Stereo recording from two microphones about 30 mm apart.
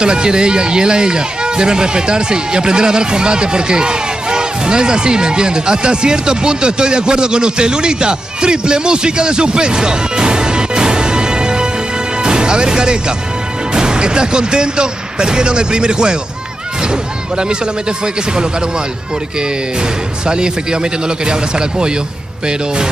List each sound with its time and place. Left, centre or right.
0.0 s speech: right
20.2 s speech: right